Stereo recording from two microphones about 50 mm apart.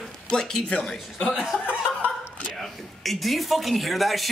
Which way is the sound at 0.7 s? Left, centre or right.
Centre.